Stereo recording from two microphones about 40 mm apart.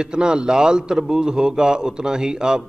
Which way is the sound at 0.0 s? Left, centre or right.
Right.